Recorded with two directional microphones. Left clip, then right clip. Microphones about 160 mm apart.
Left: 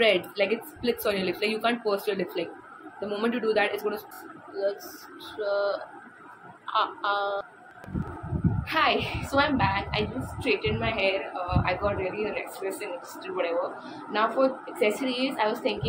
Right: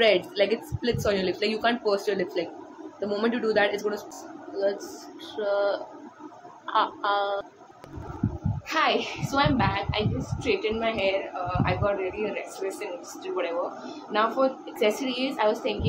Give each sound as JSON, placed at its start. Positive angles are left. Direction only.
{"t": 0.0, "sound": "a woman's voice", "side_deg": 0}
{"t": 6.7, "sound": "a woman's voice", "side_deg": -10}
{"t": 8.6, "sound": "a woman's voice", "side_deg": -20}
{"t": 9.0, "sound": "a woman's voice", "side_deg": 0}